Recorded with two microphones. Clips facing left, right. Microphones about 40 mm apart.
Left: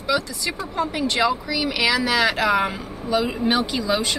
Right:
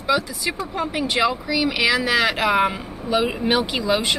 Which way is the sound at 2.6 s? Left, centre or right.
Centre.